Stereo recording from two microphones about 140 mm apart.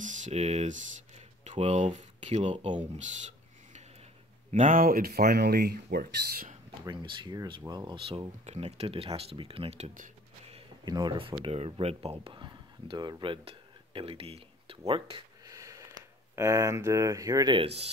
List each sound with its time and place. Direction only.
0.0 s speech: 60° right (ahead or behind); by 2.8 s 40° right (ahead or behind)
3.0 s a sound: 55° right (ahead or behind)
4.5 s speech: 65° right (ahead or behind); by 6.5 s 90° right
6.8 s speech: 30° right (ahead or behind)
8.5 s speech: 50° right (ahead or behind)
9.9 s a sound: 65° right (ahead or behind)
10.9 s speech: 30° right (ahead or behind)
15.4 s a sound: 25° right (ahead or behind)
16.3 s speech: 20° right (ahead or behind)